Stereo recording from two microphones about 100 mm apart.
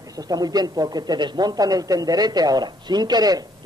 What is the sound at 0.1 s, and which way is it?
A man's voice, 40° right (ahead or behind).